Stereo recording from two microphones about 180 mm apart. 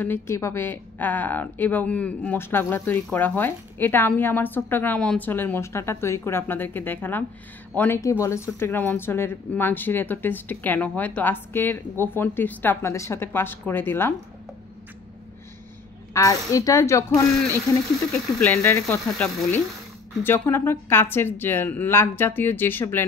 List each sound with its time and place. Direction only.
0.0 s a woman's voice: 15° left (ahead or behind)
16.1 s a woman's voice: 20° left (ahead or behind)
18.4 s a woman's voice: 15° left (ahead or behind)